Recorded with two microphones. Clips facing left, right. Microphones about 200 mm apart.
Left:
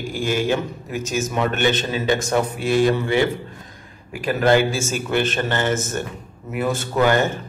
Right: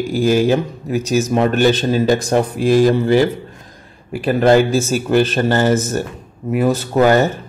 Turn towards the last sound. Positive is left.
turn(degrees=-40)  # may be behind; listen again after turning